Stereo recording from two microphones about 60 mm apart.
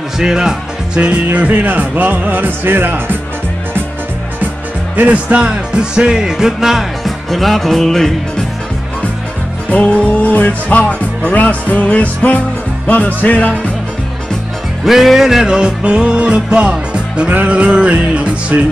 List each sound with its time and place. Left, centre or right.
0.2 s speech: centre; by 3.2 s right
4.9 s music: right; by 8.1 s centre
9.7 s music: left
14.9 s music: centre
17.3 s speech: right